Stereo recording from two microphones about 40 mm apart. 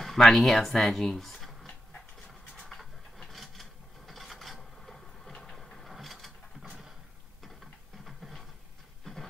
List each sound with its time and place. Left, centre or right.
0.0 s speech: centre
2.8 s filing: centre
4.6 s a sound: centre
5.9 s mechanisms: centre
6.6 s a sound: centre
9.0 s train: centre